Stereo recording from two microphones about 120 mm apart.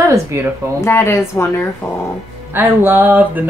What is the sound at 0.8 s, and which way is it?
Speech, 25° left (ahead or behind).